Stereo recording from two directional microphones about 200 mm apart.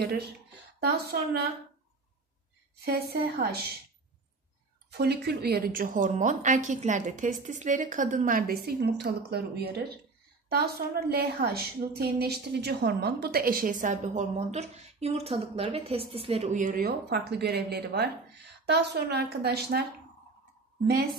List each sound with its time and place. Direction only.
0.7 s a woman's voice: 55° right (ahead or behind)
2.8 s a woman's voice: 50° right (ahead or behind)
4.9 s a woman's voice: 55° right (ahead or behind)